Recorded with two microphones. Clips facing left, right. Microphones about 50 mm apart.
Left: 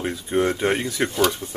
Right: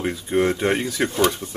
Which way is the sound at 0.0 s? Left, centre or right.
Centre.